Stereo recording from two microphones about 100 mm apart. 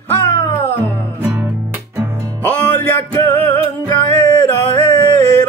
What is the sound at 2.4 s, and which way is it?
Music, 20° left (ahead or behind).